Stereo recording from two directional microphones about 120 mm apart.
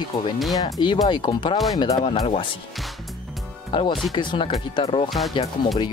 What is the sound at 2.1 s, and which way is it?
Speech, 50° left (ahead or behind).